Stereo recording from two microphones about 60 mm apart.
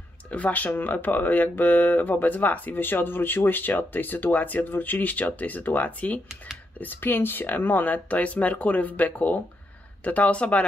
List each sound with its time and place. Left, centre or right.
0.3 s speech: left